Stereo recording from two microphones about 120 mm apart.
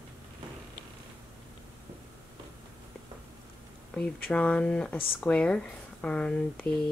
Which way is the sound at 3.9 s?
10° left (ahead or behind).